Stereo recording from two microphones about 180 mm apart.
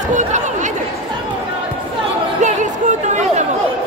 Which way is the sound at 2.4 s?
40° right (ahead or behind).